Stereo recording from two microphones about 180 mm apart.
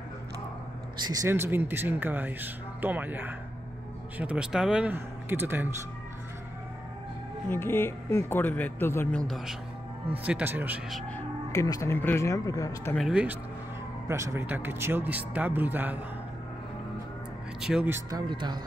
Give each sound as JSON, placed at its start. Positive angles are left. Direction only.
{"t": 1.0, "sound": "speech", "side_deg": -20}
{"t": 7.4, "sound": "speech", "side_deg": 10}
{"t": 10.1, "sound": "speech", "side_deg": -10}
{"t": 10.9, "sound": "speech", "side_deg": 0}
{"t": 11.5, "sound": "speech", "side_deg": 20}
{"t": 12.9, "sound": "speech", "side_deg": -5}
{"t": 14.0, "sound": "speech", "side_deg": -15}
{"t": 17.6, "sound": "speech", "side_deg": -5}
{"t": 18.2, "sound": "speech", "side_deg": -25}